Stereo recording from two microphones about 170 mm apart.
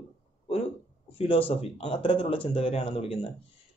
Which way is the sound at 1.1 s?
35° left (ahead or behind).